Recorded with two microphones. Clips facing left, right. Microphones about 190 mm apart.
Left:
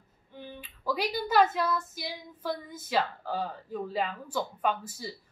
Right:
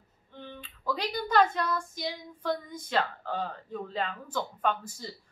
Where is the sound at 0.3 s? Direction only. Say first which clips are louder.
Left 1 dB; 10° left (ahead or behind).